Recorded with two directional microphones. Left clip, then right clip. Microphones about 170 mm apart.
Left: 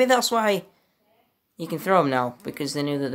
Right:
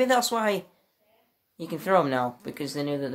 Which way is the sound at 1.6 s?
30° left (ahead or behind).